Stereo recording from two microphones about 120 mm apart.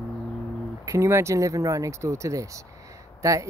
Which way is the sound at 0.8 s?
25° right (ahead or behind).